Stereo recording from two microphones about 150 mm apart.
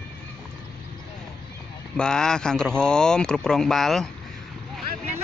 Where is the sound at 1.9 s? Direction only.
5° left (ahead or behind).